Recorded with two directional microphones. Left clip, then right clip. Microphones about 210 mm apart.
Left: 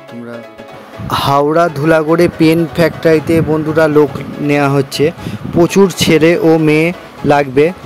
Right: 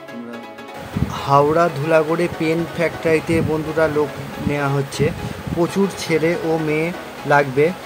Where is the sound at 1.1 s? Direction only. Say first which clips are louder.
Left 5 dB; 35° left (ahead or behind).